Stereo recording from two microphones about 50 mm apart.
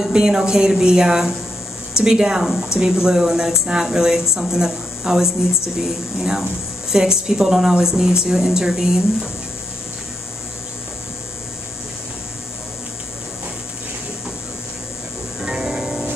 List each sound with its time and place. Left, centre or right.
0.0 s speech: centre
15.4 s music: centre